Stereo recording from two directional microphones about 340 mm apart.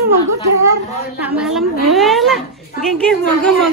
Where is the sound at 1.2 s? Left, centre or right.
Centre.